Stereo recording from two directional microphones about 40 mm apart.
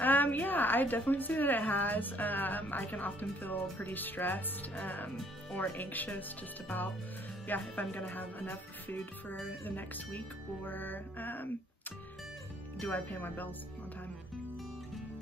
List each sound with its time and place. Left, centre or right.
0.0 s a woman's voice: left
7.4 s speech: left
12.7 s speech: left